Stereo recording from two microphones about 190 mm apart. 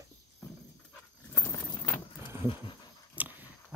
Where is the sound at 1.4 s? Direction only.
20° left (ahead or behind).